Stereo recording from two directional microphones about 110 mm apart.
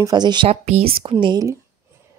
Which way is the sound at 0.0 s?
40° right (ahead or behind).